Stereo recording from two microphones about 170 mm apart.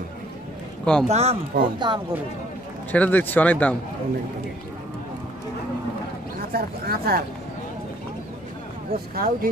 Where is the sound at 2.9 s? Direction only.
10° left (ahead or behind).